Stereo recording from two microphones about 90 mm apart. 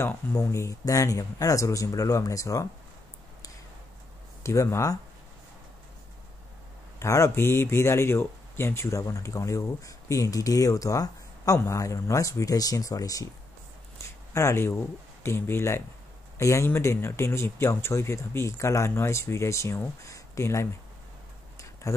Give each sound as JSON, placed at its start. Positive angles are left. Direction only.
{"t": 0.5, "sound": "speech", "side_deg": 35}
{"t": 4.4, "sound": "speech", "side_deg": 35}
{"t": 7.0, "sound": "speech", "side_deg": 35}
{"t": 14.3, "sound": "speech", "side_deg": 30}
{"t": 21.8, "sound": "speech", "side_deg": 35}